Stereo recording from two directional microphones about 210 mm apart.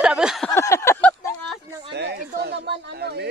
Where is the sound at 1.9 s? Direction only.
50° right (ahead or behind).